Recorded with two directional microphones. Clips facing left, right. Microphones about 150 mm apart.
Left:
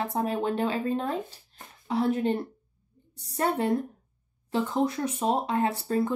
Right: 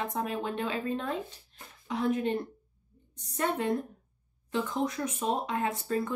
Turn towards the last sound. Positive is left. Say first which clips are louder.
# left 4 dB
turn(degrees=35)  # may be behind; listen again after turning